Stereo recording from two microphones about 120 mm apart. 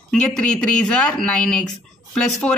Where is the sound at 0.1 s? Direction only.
5° left (ahead or behind).